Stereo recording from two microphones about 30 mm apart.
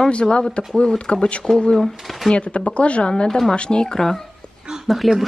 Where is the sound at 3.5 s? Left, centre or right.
Left.